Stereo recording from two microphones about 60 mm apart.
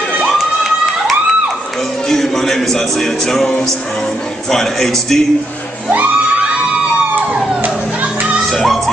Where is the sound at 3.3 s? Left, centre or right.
Centre.